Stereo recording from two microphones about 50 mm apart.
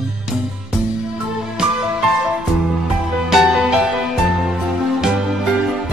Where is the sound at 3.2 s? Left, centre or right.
Centre.